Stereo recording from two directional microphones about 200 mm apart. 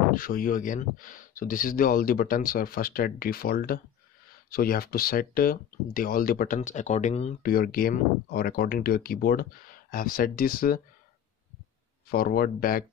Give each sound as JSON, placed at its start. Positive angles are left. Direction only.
{"t": 0.1, "sound": "speech", "side_deg": 45}
{"t": 7.4, "sound": "speech", "side_deg": 45}
{"t": 12.1, "sound": "speech", "side_deg": 50}